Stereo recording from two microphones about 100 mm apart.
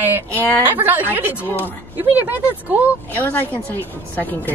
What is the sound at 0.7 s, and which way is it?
Speech, 20° right (ahead or behind).